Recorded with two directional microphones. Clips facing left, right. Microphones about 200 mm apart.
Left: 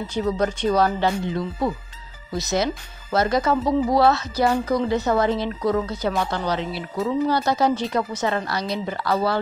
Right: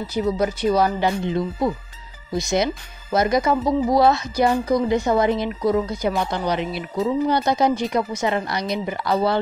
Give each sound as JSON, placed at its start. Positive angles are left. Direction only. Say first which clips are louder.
{"t": 0.0, "sound": "speech", "louder": "right 1 dB", "side_deg": -10}